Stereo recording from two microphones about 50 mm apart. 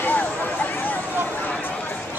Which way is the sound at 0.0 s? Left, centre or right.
Left.